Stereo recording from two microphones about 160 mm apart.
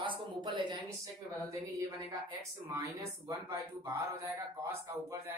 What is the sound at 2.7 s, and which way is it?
Speech, 20° right (ahead or behind).